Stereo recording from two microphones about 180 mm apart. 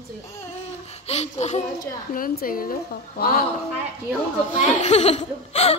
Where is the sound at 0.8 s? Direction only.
35° left (ahead or behind).